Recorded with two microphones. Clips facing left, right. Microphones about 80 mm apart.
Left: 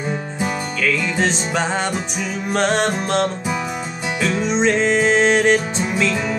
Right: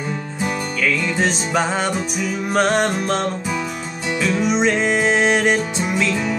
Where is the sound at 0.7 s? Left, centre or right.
Centre.